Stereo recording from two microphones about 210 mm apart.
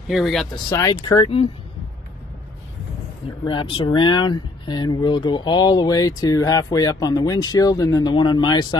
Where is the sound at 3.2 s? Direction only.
25° left (ahead or behind).